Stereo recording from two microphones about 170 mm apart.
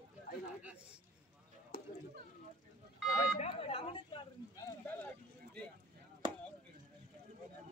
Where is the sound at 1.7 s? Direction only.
60° left (ahead or behind).